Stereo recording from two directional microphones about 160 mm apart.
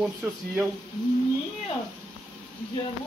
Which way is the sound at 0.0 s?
10° right (ahead or behind).